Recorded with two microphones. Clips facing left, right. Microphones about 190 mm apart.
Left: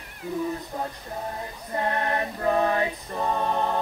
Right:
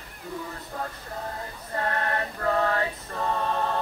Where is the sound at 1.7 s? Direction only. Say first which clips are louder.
Left 2 dB; 20° left (ahead or behind).